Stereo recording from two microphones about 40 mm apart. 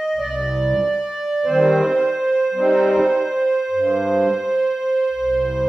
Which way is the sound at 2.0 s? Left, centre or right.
Centre.